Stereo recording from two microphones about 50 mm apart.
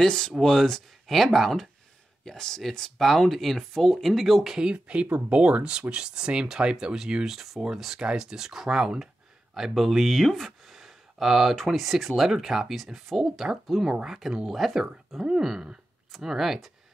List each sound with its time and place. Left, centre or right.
0.0 s speech: centre
4.7 s speech: right
7.2 s speech: centre
10.2 s a sound: centre
11.5 s speech: centre